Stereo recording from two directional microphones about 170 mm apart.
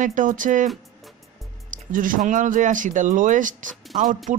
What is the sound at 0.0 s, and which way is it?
Speech, 50° right (ahead or behind).